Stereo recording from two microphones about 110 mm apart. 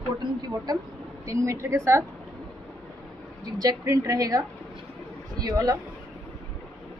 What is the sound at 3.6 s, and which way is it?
A woman's voice, 35° right (ahead or behind).